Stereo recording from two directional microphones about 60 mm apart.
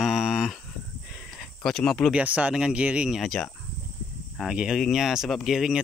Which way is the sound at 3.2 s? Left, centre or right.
Centre.